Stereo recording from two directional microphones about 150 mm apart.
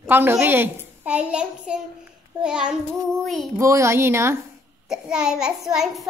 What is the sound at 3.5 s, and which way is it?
Speech, 20° right (ahead or behind).